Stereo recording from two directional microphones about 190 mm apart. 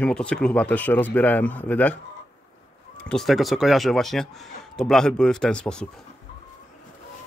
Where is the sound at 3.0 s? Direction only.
Centre (ahead or behind).